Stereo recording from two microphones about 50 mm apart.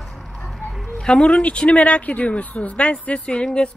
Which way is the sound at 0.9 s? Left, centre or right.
Centre.